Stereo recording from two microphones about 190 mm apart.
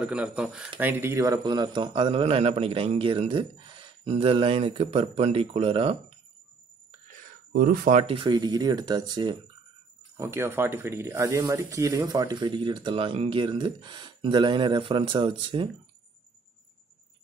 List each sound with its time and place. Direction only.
0.0 s speech: 5° right (ahead or behind); by 6.1 s 30° right (ahead or behind)
7.5 s speech: 55° right (ahead or behind)
7.9 s speech: 30° right (ahead or behind)